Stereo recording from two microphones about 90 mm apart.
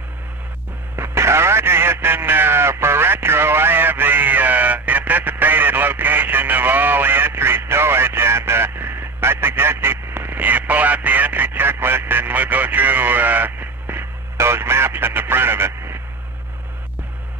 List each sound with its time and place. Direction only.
0.9 s radio: 30° right (ahead or behind)